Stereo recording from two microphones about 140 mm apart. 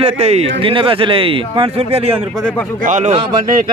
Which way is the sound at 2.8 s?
60° right (ahead or behind).